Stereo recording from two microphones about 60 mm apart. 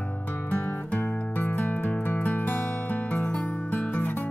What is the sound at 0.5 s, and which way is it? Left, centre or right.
Music, left.